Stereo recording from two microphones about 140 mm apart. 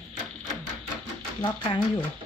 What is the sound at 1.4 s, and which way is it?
Speech, 35° left (ahead or behind).